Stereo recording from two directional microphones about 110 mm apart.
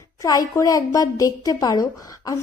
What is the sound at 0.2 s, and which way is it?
A woman's voice, 30° left (ahead or behind).